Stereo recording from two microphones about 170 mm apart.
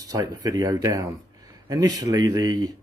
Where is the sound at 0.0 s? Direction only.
20° right (ahead or behind).